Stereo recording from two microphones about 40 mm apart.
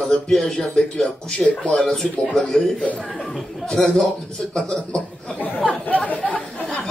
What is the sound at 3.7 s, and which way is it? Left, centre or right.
A man's voice, centre.